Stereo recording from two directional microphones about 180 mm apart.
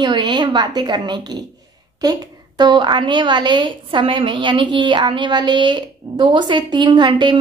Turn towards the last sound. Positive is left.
turn(degrees=-25)  # may be behind; listen again after turning